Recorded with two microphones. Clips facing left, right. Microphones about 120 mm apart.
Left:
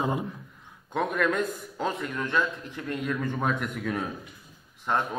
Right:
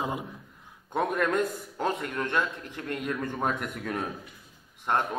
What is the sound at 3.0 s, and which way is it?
Speech, 15° right (ahead or behind).